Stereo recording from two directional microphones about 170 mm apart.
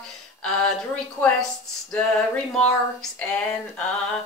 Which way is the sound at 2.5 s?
5° left (ahead or behind).